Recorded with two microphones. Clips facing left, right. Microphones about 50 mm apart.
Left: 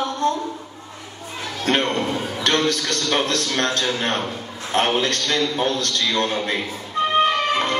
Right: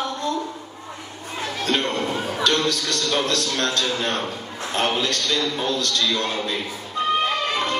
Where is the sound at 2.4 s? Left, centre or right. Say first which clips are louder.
Left 2 dB; left.